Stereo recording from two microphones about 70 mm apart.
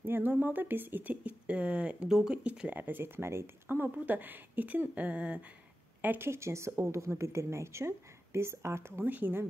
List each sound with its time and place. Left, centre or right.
0.0 s speech: right; by 2.7 s centre
2.7 s speech: right
6.0 s a woman's voice: right
9.0 s speech: right